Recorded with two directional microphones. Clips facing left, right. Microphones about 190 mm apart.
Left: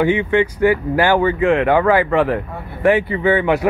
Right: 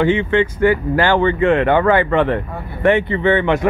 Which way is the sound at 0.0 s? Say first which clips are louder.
Even; 10° left (ahead or behind).